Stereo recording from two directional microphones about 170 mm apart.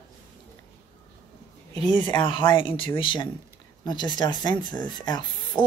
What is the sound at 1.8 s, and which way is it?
Speech, 40° right (ahead or behind).